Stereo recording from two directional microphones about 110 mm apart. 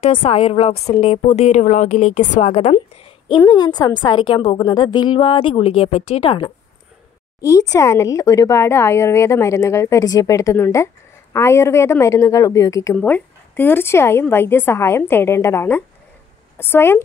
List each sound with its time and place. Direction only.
0.0 s a woman's voice: 60° left (ahead or behind); by 2.8 s 80° left
3.3 s a woman's voice: 45° left (ahead or behind)
4.6 s speech: 40° left (ahead or behind); by 6.3 s 65° left (ahead or behind)
7.4 s speech: 35° left (ahead or behind)
12.9 s speech: 15° left (ahead or behind)